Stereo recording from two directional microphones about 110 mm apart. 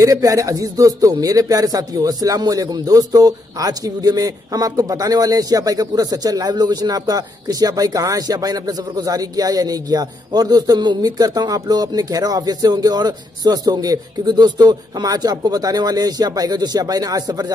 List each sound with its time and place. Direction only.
0.0 s speech: 30° right (ahead or behind)